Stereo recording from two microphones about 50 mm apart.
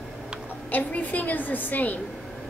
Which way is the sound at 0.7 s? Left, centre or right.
Left.